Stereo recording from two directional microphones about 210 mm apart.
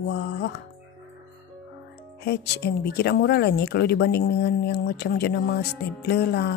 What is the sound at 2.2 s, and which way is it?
Speech, 50° left (ahead or behind).